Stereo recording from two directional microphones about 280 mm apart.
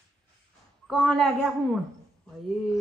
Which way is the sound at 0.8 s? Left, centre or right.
Centre.